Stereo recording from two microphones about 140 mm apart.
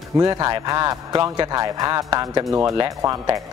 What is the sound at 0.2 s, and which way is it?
A man's voice, 25° right (ahead or behind).